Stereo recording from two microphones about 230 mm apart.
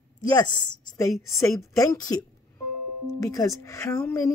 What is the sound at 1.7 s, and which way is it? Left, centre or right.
Speech, centre.